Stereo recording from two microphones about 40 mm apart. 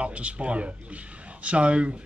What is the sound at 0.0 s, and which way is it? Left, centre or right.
Speech, right.